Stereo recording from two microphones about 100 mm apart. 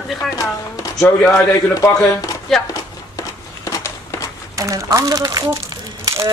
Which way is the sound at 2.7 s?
35° left (ahead or behind).